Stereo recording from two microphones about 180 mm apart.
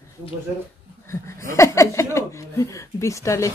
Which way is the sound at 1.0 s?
15° left (ahead or behind).